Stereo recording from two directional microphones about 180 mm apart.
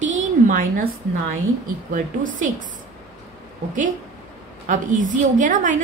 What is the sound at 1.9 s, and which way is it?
Speech, 45° right (ahead or behind).